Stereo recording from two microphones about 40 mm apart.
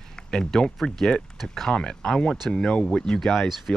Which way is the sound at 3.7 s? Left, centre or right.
Left.